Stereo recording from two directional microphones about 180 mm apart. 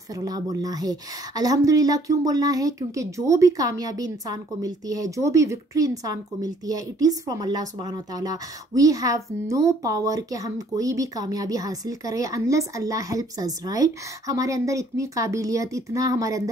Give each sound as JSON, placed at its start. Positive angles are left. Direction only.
{"t": 0.1, "sound": "a woman's voice", "side_deg": -20}